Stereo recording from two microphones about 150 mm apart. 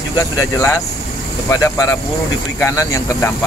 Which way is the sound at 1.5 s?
20° left (ahead or behind).